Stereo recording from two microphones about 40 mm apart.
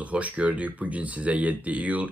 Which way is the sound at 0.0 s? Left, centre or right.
Right.